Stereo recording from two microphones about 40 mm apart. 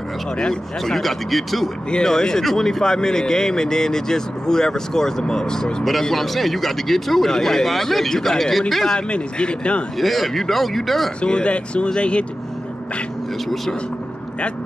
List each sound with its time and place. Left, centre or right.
0.4 s speech: centre
0.9 s speech: centre
1.9 s speech: centre
5.9 s speech: centre
9.1 s speech: left
9.9 s speech: centre
11.1 s speech: left